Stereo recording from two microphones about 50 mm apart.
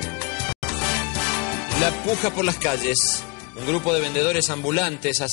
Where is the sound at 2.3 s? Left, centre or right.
Left.